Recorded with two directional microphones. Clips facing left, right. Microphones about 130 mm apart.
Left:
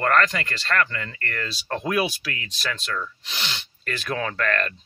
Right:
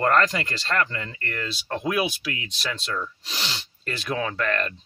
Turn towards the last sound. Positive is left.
turn(degrees=-20)  # may be behind; listen again after turning